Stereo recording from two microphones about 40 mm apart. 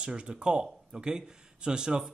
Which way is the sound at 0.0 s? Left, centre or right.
Right.